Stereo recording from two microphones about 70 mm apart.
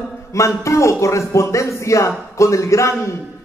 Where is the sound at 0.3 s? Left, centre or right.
Left.